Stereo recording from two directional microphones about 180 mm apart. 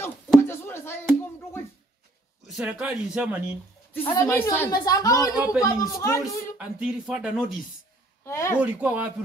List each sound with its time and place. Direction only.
0.4 s a sound: 15° left (ahead or behind)
2.4 s speech: 5° right (ahead or behind)
3.9 s a woman's voice: 10° left (ahead or behind)
5.3 s speech: 5° right (ahead or behind)
5.6 s a woman's voice: 20° left (ahead or behind)
6.2 s speech: 5° right (ahead or behind)
8.3 s a woman's voice: 15° left (ahead or behind)
8.5 s speech: 10° right (ahead or behind)